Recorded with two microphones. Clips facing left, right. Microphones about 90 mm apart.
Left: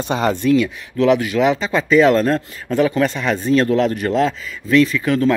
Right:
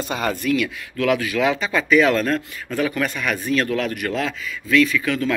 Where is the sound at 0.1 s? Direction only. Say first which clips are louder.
Left 7 dB; 25° left (ahead or behind).